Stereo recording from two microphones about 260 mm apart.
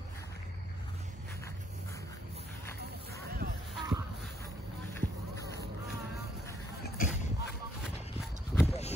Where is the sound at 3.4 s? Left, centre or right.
Right.